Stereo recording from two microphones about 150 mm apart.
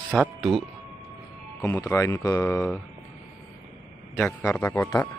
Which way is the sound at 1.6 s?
15° left (ahead or behind).